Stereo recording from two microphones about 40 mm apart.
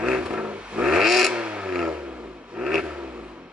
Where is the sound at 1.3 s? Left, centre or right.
Right.